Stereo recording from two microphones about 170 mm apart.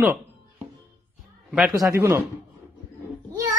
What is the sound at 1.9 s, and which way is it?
Speech, 15° right (ahead or behind).